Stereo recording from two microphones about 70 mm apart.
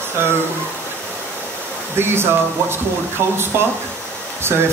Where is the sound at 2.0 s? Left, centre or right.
Right.